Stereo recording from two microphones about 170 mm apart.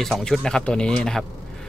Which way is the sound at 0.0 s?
Centre (ahead or behind).